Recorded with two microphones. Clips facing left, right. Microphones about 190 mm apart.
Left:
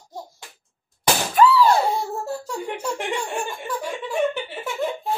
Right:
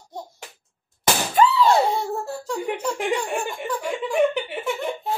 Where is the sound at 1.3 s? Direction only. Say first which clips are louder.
Left 2 dB; 25° right (ahead or behind).